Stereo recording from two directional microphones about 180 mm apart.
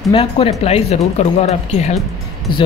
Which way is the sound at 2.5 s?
25° left (ahead or behind).